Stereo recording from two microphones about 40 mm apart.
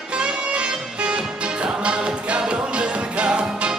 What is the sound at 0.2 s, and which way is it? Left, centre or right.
Music, right.